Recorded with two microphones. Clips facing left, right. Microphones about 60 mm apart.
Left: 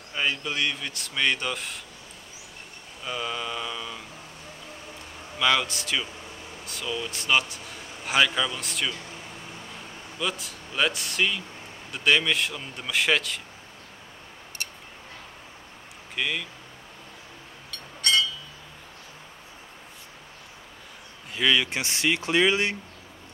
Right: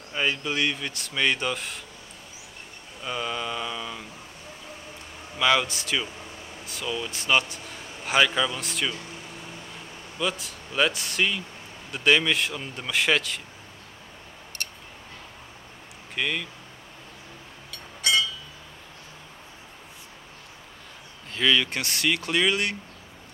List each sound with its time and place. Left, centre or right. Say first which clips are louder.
0.1 s speech: right 1 dB; centre
3.0 s speech: right 1 dB; centre
5.4 s speech: right 1 dB; centre
10.1 s speech: right 2 dB; centre
14.6 s a sound: even; centre
16.2 s speech: right 1 dB; centre
17.6 s a sound: even; centre
21.3 s speech: even; centre